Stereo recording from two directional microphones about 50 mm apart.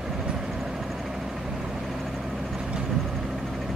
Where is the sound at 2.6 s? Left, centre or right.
Centre.